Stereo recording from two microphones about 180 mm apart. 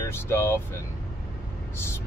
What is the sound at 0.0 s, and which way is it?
Speech, 15° left (ahead or behind).